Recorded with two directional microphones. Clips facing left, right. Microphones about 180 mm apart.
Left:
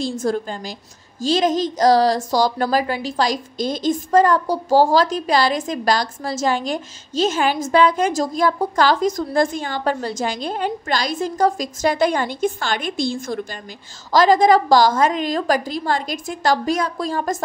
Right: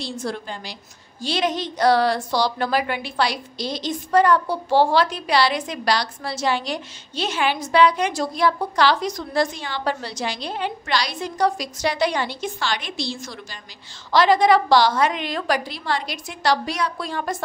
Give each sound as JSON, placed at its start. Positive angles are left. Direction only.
{"t": 0.1, "sound": "a woman's voice", "side_deg": 45}